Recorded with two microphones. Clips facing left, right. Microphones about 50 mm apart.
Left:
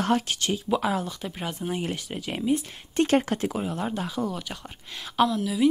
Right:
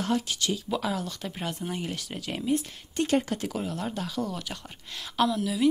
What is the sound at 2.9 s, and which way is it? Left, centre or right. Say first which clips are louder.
Speech: left 4 dB; left.